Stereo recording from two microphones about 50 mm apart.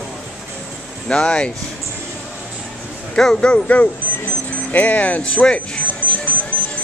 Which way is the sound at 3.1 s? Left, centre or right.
Centre.